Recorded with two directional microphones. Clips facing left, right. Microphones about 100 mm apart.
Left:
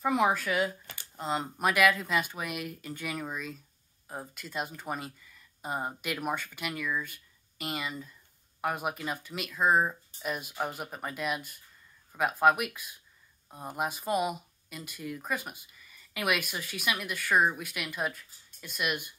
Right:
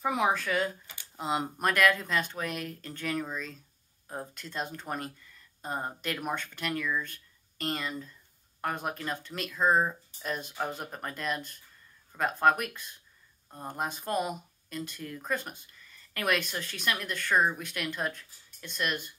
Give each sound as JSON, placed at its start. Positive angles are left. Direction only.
{"t": 0.0, "sound": "speech", "side_deg": 0}